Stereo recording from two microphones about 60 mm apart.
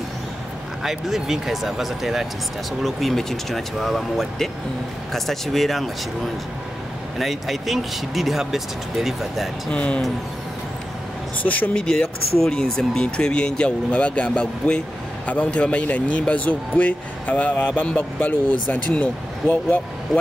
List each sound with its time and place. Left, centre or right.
0.8 s speech: centre
9.7 s speech: centre
11.4 s speech: left
11.7 s speech: centre; by 19.8 s left